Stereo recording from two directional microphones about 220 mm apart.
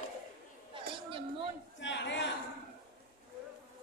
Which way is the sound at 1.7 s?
55° left (ahead or behind).